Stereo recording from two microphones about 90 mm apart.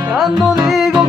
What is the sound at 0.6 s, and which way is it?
Music, 5° right (ahead or behind).